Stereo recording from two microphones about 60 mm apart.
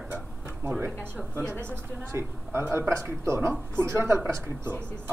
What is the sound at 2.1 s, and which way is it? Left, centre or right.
Speech, right.